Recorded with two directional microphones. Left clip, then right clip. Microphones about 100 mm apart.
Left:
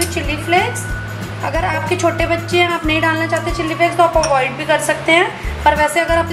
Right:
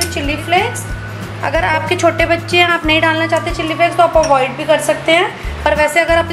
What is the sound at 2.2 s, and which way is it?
Speech, 25° left (ahead or behind).